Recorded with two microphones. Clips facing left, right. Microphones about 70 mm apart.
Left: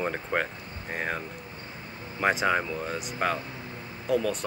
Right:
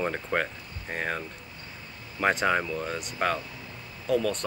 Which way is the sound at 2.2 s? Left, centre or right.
Centre.